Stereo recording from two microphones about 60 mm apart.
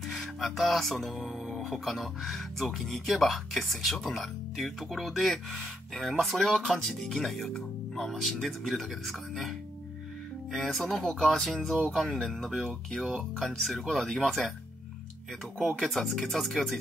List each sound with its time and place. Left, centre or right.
0.1 s speech: centre
10.5 s speech: centre
15.6 s speech: centre